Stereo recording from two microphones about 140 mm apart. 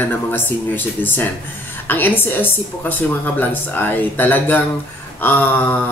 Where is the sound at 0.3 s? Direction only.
15° left (ahead or behind).